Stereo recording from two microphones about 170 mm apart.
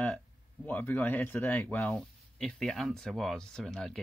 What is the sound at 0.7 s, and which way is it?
Speech, 10° left (ahead or behind).